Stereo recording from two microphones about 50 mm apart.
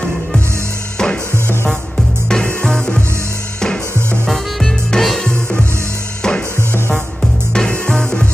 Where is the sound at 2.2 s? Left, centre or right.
Centre.